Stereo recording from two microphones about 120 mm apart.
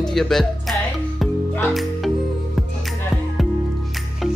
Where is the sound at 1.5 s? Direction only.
5° left (ahead or behind).